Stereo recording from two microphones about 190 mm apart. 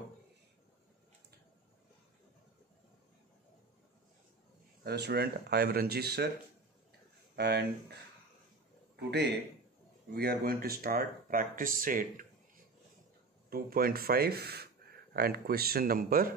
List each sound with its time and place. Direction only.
4.8 s speech: 60° right (ahead or behind)
7.3 s speech: 60° right (ahead or behind)
10.1 s speech: 55° right (ahead or behind)
13.5 s speech: 50° right (ahead or behind)